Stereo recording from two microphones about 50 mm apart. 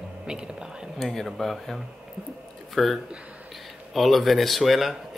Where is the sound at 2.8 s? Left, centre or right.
Centre.